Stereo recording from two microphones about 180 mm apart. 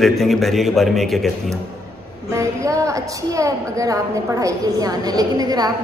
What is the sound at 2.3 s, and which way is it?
A woman's voice, 15° right (ahead or behind).